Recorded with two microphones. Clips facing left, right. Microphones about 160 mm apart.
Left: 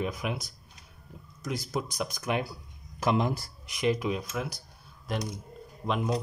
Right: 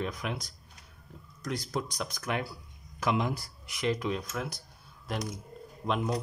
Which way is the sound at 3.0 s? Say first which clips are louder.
Left 3 dB; 35° left (ahead or behind).